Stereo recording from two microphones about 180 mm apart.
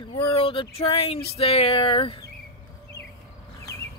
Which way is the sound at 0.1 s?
20° left (ahead or behind).